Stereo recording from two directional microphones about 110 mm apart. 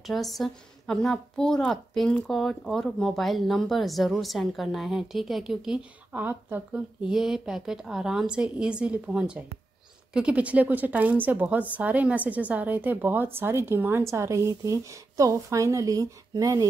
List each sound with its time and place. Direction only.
0.0 s speech: centre (ahead or behind)
6.1 s a woman's voice: 15° right (ahead or behind); by 16.6 s 35° right (ahead or behind)